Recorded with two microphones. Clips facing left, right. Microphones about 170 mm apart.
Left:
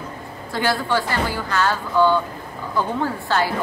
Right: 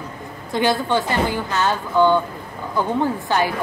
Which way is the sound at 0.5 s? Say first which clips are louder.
Right 2 dB; 20° right (ahead or behind).